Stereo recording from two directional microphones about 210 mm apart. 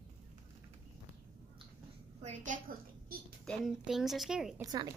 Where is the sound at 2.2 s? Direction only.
35° right (ahead or behind).